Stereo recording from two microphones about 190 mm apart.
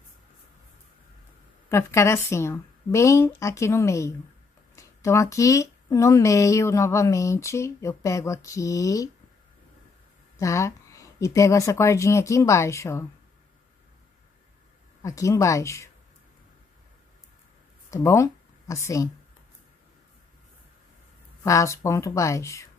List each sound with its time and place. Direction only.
1.7 s speech: 15° left (ahead or behind)
10.4 s speech: 15° left (ahead or behind)
15.0 s speech: 15° left (ahead or behind)
17.8 s a sound: 15° left (ahead or behind)
21.5 s speech: 15° left (ahead or behind)